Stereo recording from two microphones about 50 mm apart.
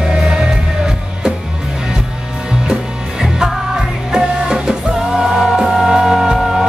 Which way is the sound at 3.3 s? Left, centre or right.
Centre.